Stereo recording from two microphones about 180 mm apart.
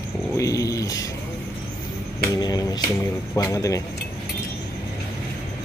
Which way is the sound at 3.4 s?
20° left (ahead or behind).